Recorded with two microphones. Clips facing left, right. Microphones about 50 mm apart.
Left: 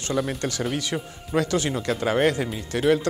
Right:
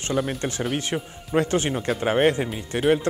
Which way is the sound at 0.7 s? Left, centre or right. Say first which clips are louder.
Right 1 dB; right.